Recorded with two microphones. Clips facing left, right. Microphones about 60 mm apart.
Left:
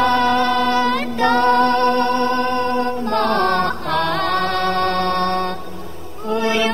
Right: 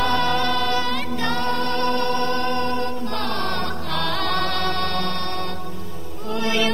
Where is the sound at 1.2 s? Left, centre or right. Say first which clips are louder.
Left 11 dB; left.